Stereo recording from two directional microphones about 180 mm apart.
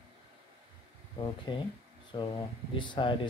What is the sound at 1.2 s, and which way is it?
Speech, 25° left (ahead or behind).